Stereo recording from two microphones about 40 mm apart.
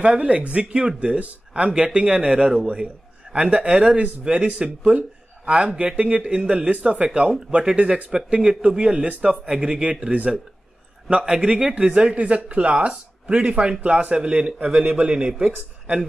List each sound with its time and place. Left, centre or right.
0.0 s speech: right
8.3 s speech: centre
11.2 s speech: right